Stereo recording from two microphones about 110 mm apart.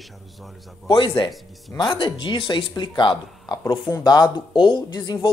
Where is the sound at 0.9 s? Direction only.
50° left (ahead or behind).